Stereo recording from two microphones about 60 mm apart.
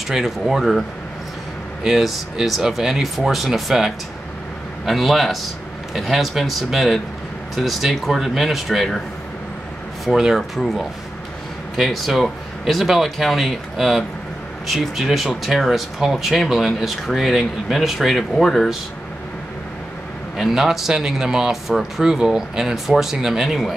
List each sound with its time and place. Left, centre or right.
0.1 s speech: centre
10.0 s speech: centre
20.3 s speech: centre